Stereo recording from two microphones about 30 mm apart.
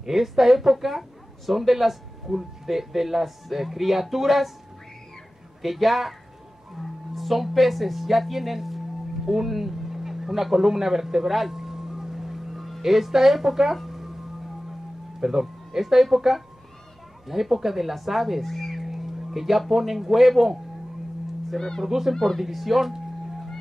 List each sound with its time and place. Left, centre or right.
0.0 s speech: centre
5.6 s speech: centre
11.5 s music: centre
15.1 s speech: centre
18.4 s speech: centre
18.9 s speech: centre
21.5 s speech: centre
21.8 s speech: centre
22.4 s speech: centre